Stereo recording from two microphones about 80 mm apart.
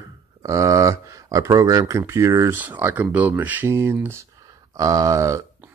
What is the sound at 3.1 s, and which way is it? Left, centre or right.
Speech, centre.